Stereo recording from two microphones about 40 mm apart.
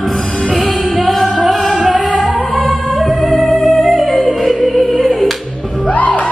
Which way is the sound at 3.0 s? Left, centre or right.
Centre.